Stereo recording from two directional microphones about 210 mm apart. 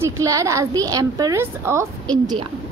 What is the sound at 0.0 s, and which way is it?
A woman's voice, 15° right (ahead or behind).